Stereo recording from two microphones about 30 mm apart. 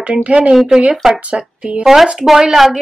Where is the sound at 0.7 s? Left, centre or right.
Right.